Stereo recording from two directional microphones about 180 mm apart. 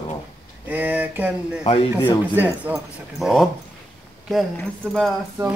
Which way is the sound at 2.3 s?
10° right (ahead or behind).